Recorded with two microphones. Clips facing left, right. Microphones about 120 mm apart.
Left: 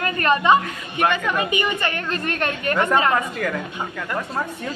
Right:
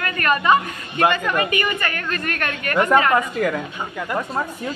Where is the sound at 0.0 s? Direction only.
25° left (ahead or behind).